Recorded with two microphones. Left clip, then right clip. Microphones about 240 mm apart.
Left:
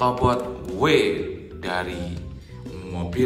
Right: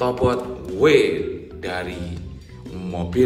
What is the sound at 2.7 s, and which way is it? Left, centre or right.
Music, centre.